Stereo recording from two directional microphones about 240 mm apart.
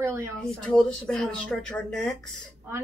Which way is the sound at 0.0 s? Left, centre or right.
Centre.